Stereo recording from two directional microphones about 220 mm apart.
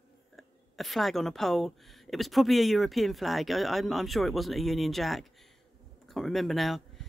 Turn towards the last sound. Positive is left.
turn(degrees=0)  # may be behind; listen again after turning